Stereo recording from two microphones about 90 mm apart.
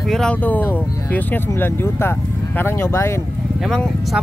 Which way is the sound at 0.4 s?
20° left (ahead or behind).